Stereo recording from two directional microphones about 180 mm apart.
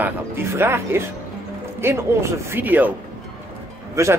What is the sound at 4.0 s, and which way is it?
Speech, 15° right (ahead or behind).